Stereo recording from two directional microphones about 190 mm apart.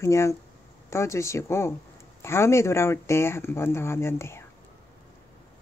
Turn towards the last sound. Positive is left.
turn(degrees=15)  # may be behind; listen again after turning